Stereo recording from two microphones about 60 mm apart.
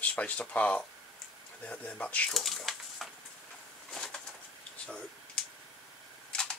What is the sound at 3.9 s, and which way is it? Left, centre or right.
Bird, centre.